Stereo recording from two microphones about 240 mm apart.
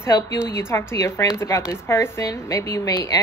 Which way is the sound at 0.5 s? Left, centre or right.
Centre.